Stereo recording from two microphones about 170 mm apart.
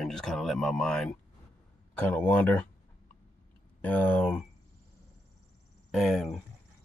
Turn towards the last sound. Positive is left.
turn(degrees=0)  # may be behind; listen again after turning